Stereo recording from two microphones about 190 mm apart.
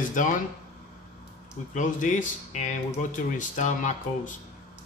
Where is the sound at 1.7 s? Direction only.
40° left (ahead or behind).